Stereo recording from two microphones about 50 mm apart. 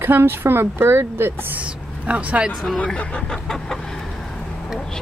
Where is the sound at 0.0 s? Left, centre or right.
Right.